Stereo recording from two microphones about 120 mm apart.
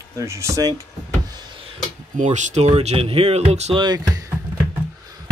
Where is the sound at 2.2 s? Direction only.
80° right; by 3.8 s 60° right (ahead or behind).